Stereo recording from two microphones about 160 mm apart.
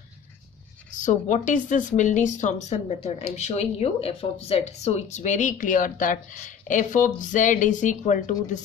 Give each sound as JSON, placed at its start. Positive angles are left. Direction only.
{"t": 0.9, "sound": "speech", "side_deg": 50}